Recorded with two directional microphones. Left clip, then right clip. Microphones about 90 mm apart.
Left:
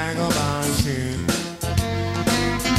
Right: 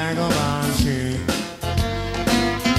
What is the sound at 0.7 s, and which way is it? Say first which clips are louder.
Music: right 2 dB; centre (ahead or behind).